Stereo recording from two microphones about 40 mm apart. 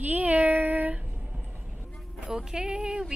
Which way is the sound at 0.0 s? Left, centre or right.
Right.